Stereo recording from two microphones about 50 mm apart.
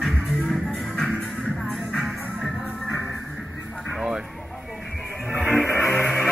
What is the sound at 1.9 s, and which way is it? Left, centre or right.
Music, centre.